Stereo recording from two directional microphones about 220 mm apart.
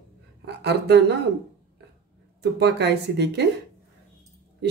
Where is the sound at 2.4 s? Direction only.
50° right (ahead or behind).